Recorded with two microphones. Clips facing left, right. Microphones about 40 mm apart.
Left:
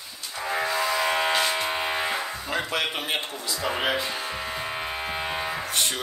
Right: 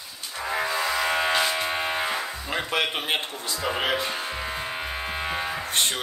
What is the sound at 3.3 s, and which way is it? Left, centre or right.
Music, right.